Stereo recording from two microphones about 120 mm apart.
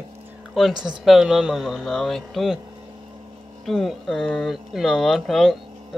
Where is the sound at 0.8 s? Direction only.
5° right (ahead or behind).